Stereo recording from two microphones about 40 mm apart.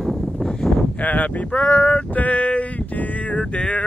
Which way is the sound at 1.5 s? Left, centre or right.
Left.